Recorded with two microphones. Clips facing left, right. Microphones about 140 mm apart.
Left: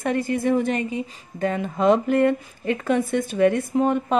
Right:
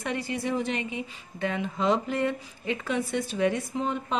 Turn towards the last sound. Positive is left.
turn(degrees=55)  # may be behind; listen again after turning